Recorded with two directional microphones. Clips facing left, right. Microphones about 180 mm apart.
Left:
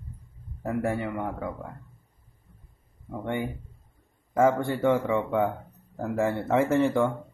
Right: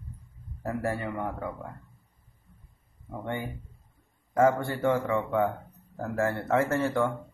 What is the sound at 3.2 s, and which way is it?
Speech, 15° left (ahead or behind).